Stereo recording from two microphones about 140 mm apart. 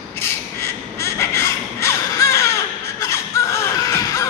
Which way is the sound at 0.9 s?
20° left (ahead or behind).